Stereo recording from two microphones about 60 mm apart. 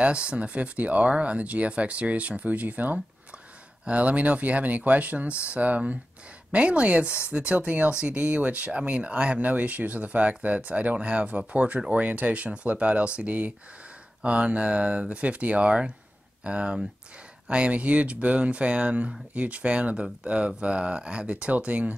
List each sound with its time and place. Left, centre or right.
0.0 s speech: centre